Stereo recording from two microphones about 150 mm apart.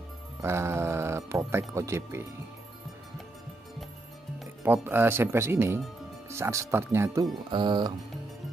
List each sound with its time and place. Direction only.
0.4 s music: 15° right (ahead or behind)
1.7 s speech: 20° right (ahead or behind)
4.8 s speech: 15° right (ahead or behind)
7.5 s speech: 30° right (ahead or behind)